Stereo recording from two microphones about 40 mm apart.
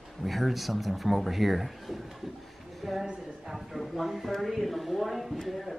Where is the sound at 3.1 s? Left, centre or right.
Centre.